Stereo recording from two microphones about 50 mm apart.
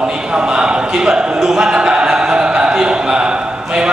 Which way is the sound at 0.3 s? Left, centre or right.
Centre.